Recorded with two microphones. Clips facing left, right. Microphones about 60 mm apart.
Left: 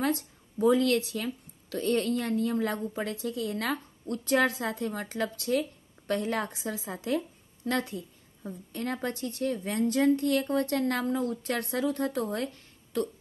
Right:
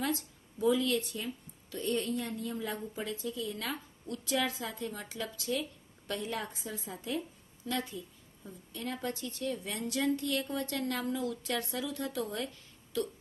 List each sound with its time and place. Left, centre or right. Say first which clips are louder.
0.0 s speech: left 5 dB; left
4.0 s speech: left 7 dB; left
8.5 s a woman's voice: left 6 dB; left